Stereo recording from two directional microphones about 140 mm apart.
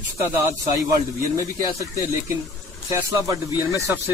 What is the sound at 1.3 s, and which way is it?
Speech, 20° right (ahead or behind).